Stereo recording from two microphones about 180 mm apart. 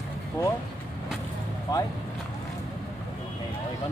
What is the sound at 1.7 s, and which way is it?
Speech, 20° left (ahead or behind).